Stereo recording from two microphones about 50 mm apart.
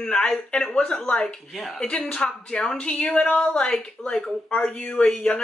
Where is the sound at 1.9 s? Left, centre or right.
Left.